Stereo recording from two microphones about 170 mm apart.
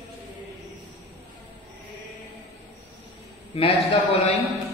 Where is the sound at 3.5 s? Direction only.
35° left (ahead or behind).